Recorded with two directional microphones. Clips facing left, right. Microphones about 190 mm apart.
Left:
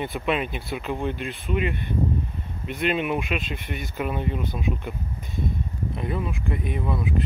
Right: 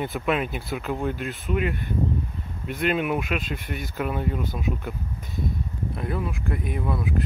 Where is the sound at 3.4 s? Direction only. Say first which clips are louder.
Right 1 dB; 45° right (ahead or behind).